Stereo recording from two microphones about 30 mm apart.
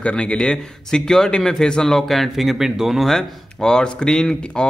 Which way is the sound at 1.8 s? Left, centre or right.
Centre.